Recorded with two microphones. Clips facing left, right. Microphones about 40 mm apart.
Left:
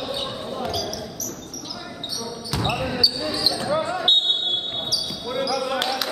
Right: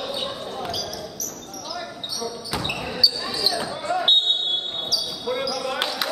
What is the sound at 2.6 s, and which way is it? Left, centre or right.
Basketball bounce, centre.